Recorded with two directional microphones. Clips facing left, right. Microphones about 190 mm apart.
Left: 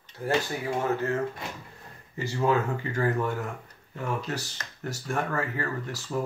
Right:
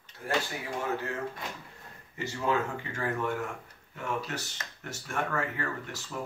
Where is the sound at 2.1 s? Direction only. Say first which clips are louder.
Left 4 dB; 40° left (ahead or behind).